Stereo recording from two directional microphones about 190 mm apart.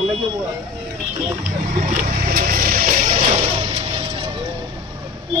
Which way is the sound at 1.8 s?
45° right (ahead or behind).